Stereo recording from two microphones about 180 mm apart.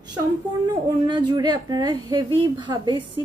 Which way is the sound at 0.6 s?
25° right (ahead or behind).